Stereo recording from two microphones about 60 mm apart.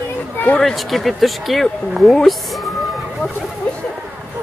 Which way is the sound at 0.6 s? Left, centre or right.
Centre.